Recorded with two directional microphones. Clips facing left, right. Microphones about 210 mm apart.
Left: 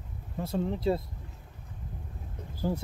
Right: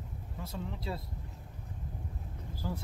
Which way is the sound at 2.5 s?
50° left (ahead or behind).